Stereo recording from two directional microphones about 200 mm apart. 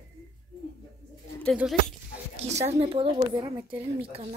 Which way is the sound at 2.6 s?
30° right (ahead or behind).